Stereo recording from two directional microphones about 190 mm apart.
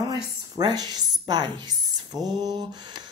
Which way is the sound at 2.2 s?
20° right (ahead or behind).